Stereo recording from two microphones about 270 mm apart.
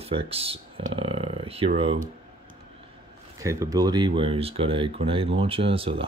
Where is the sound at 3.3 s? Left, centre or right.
Centre.